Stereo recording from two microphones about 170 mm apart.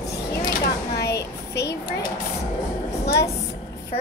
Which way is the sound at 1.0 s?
75° left (ahead or behind).